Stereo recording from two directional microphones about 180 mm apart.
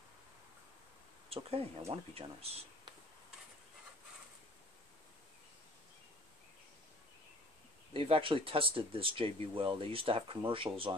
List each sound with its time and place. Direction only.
1.3 s speech: 35° right (ahead or behind)
7.9 s speech: 30° right (ahead or behind)